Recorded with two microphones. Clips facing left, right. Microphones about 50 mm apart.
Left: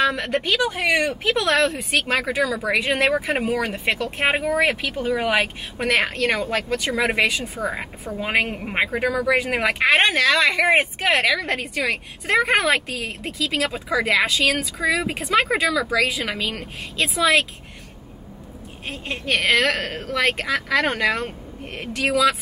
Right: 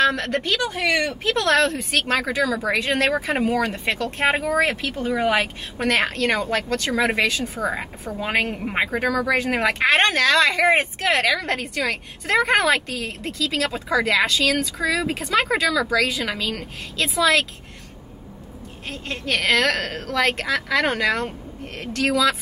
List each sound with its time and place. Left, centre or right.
0.0 s a woman's voice: centre
0.7 s speech: left
1.3 s a woman's voice: centre
18.9 s a woman's voice: centre